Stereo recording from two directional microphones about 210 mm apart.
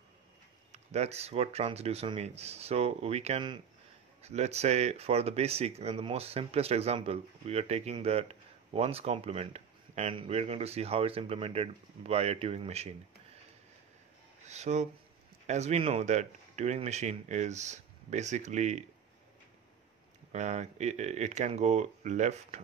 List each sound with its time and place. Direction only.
0.7 s speech: 30° right (ahead or behind)
14.4 s speech: 30° right (ahead or behind)
20.3 s speech: 35° right (ahead or behind)